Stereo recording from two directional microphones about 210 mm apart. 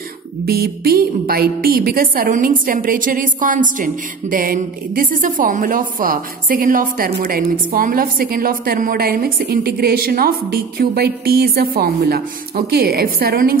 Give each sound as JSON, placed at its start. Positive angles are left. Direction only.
{"t": 0.5, "sound": "a woman's voice", "side_deg": -45}